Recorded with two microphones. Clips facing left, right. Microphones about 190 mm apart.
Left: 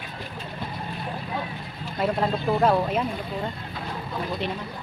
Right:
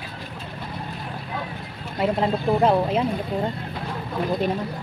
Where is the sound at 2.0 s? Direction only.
20° right (ahead or behind).